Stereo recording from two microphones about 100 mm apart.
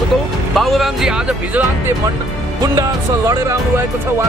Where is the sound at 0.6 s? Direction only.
Centre (ahead or behind); by 2.0 s 15° right (ahead or behind).